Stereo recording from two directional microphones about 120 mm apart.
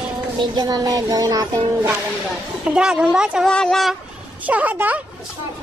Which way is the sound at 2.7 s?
5° right (ahead or behind).